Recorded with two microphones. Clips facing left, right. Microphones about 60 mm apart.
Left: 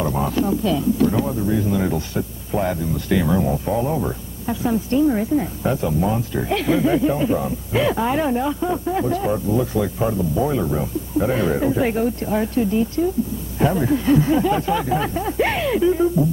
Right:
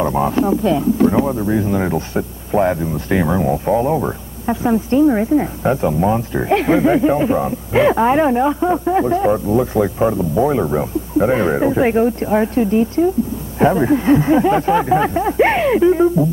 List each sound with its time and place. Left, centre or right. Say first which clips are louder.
0.0 s speech: right 5 dB; right